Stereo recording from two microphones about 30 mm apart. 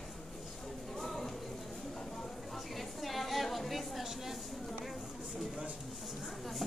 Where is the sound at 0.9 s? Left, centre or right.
Centre.